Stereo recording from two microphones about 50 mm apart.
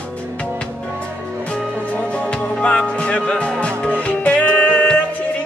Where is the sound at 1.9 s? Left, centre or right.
Left.